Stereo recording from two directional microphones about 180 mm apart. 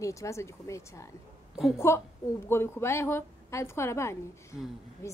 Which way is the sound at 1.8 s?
15° left (ahead or behind).